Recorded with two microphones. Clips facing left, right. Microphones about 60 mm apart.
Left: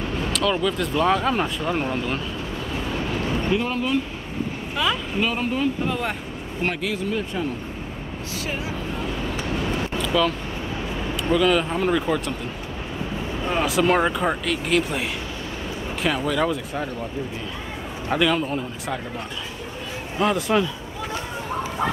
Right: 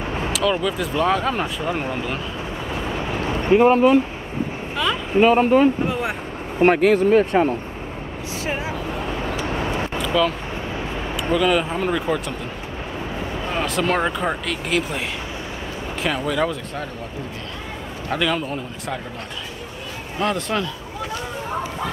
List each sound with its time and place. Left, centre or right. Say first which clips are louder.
0.3 s speech: right 1 dB; centre
2.7 s vehicle: right 1 dB; right
3.5 s speech: right 13 dB; right
5.1 s speech: right 10 dB; right
5.9 s speech: right 2 dB; centre
6.6 s speech: right 11 dB; right
9.9 s vehicle: right 1 dB; centre
11.3 s speech: right 1 dB; centre
13.5 s speech: left 2 dB; centre
18.1 s speech: left 1 dB; centre
20.2 s speech: left 2 dB; centre